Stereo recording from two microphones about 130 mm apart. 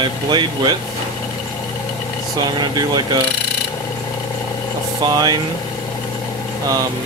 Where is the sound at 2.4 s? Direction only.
35° right (ahead or behind).